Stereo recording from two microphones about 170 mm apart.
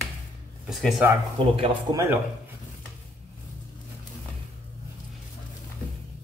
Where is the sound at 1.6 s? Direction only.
25° right (ahead or behind).